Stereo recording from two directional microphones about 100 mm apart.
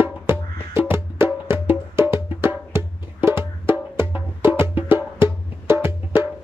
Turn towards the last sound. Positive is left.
turn(degrees=-25)  # may be behind; listen again after turning